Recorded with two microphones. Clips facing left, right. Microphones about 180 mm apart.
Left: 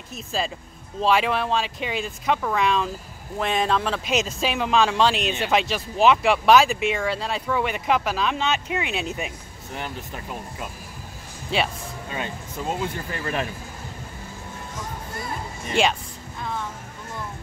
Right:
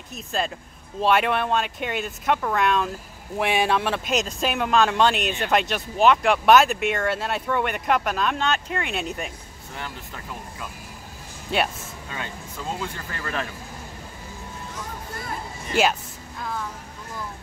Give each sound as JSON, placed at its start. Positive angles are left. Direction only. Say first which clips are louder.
{"t": 0.1, "sound": "speech", "louder": "even", "side_deg": 0}
{"t": 9.8, "sound": "speech", "louder": "left 3 dB", "side_deg": 20}
{"t": 12.1, "sound": "speech", "louder": "left 3 dB", "side_deg": 20}
{"t": 15.7, "sound": "speech", "louder": "even", "side_deg": -5}